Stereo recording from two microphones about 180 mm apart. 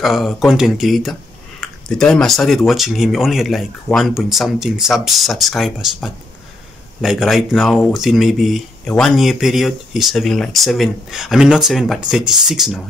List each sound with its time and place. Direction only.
0.0 s speech: centre (ahead or behind)